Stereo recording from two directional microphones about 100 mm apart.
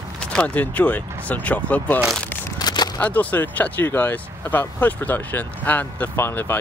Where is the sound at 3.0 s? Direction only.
15° left (ahead or behind).